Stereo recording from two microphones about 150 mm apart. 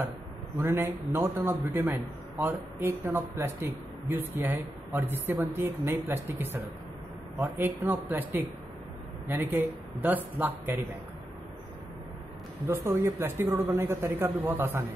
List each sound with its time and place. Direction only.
0.6 s a man's voice: 15° right (ahead or behind)
12.6 s a man's voice: 20° right (ahead or behind)